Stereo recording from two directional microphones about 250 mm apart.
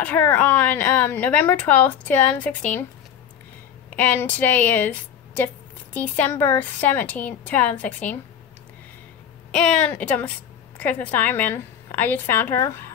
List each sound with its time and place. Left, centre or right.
0.0 s a woman's voice: centre
3.9 s a woman's voice: centre
9.5 s a woman's voice: centre